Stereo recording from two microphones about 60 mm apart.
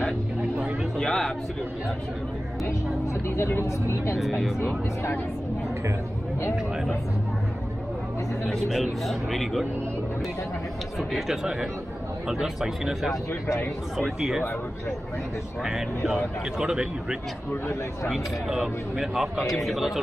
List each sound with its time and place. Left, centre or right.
0.9 s a sound: centre
3.3 s speech: left
8.6 s a man's voice: centre
11.0 s a man's voice: centre
16.5 s a man's voice: centre